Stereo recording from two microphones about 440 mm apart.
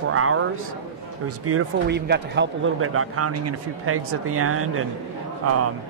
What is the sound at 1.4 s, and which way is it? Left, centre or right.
A man's voice, right.